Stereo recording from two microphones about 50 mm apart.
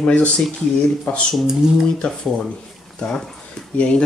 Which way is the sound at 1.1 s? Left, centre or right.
Left.